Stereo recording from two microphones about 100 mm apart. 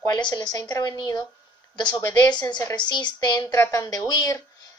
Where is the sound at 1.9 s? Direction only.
30° left (ahead or behind).